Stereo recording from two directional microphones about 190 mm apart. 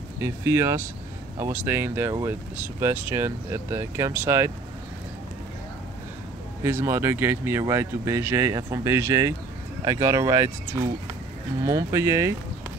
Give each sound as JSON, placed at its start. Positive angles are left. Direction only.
{"t": 0.2, "sound": "speech", "side_deg": -15}
{"t": 6.6, "sound": "speech", "side_deg": -15}